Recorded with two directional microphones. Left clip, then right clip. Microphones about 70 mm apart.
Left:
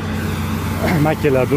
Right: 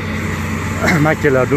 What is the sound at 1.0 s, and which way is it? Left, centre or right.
Speech, centre.